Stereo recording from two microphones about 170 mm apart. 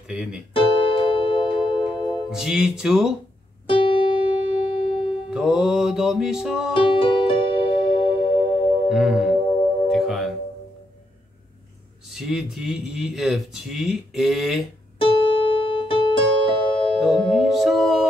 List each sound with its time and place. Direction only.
0.1 s speech: 5° right (ahead or behind)
0.5 s keyboard: 30° left (ahead or behind)
2.3 s speech: 5° right (ahead or behind)
3.6 s music: 30° left (ahead or behind)
5.3 s speech: 5° right (ahead or behind)
6.7 s music: 30° left (ahead or behind)
8.8 s speech: 5° right (ahead or behind)
9.8 s music: centre (ahead or behind)
12.1 s speech: centre (ahead or behind)
15.0 s music: 30° left (ahead or behind)
17.3 s music: centre (ahead or behind)